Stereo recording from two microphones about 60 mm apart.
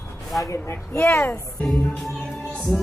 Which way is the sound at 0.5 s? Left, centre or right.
Left.